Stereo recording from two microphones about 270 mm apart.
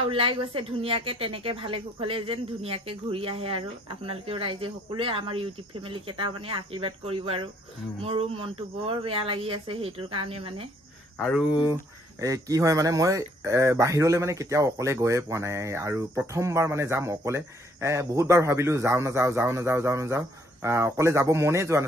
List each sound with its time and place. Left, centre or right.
0.1 s a woman's voice: centre
11.1 s speech: centre
12.2 s speech: centre